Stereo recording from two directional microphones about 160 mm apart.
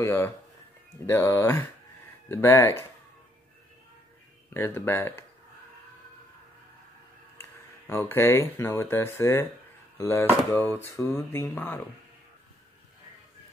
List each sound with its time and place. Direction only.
0.0 s speech: 15° left (ahead or behind)
4.6 s speech: 15° left (ahead or behind)
7.8 s speech: 15° left (ahead or behind)